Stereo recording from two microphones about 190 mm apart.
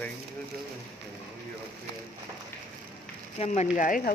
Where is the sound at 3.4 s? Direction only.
35° left (ahead or behind).